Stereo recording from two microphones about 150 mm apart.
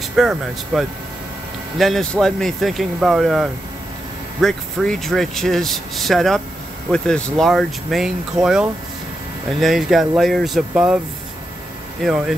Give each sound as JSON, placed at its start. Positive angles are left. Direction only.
{"t": 0.1, "sound": "speech", "side_deg": 0}
{"t": 12.0, "sound": "speech", "side_deg": 0}